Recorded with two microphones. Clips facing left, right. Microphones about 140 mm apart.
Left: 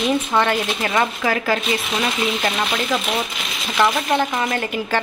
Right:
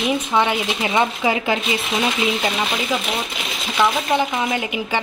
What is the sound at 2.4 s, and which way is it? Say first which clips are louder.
Speech: even; 10° right (ahead or behind).